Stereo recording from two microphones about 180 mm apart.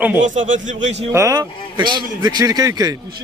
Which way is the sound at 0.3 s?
45° right (ahead or behind).